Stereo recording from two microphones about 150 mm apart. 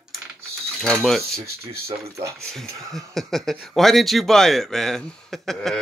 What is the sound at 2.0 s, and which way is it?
Speech, 20° right (ahead or behind).